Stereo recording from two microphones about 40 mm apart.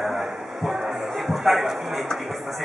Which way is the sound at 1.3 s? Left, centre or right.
Centre.